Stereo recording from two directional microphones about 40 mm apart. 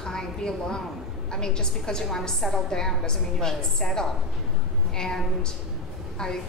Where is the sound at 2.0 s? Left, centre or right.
Centre.